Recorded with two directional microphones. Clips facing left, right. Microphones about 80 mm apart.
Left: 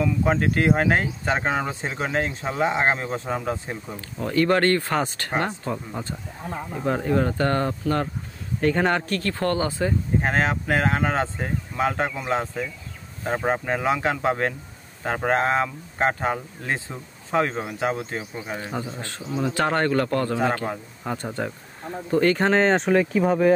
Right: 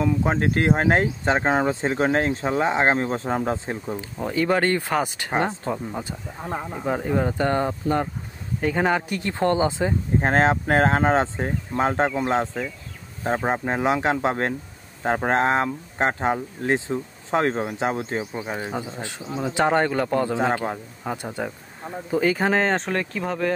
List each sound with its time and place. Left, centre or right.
0.0 s speech: right
4.2 s speech: centre
9.2 s speech: centre
10.2 s speech: right
13.7 s speech: right
18.7 s speech: centre